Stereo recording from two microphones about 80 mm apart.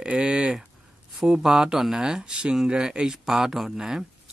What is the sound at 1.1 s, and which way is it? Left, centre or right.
Speech, centre.